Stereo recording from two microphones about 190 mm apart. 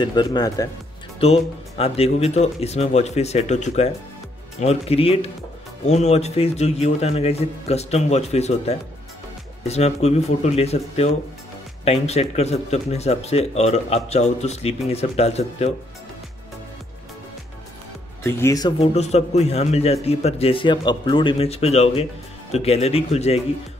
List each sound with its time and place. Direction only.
0.0 s speech: 20° left (ahead or behind)
1.2 s a man's voice: 30° left (ahead or behind)
18.2 s speech: 15° left (ahead or behind)
18.8 s a man's voice: 35° left (ahead or behind)